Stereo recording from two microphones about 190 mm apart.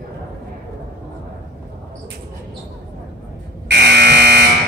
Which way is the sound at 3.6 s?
60° right (ahead or behind).